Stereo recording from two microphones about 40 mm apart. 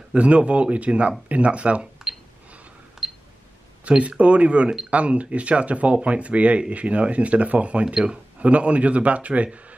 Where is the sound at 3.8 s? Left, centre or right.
Right.